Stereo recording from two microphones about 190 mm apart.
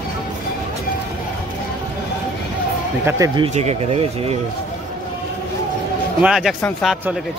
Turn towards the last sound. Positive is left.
turn(degrees=10)  # may be behind; listen again after turning